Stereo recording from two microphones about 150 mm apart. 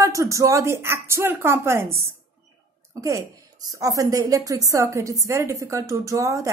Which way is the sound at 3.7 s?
20° right (ahead or behind).